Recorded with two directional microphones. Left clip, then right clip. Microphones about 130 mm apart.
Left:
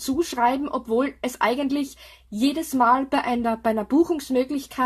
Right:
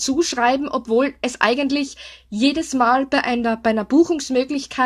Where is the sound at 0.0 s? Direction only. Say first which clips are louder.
Right 3 dB; 20° right (ahead or behind).